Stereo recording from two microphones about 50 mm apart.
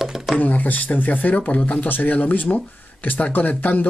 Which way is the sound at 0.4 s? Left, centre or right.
Left.